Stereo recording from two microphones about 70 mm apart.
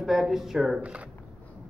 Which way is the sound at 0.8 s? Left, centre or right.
Centre.